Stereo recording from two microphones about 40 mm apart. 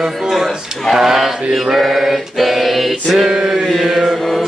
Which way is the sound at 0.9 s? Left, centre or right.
Centre.